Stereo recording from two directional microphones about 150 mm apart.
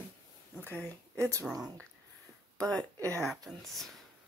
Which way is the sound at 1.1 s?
20° right (ahead or behind).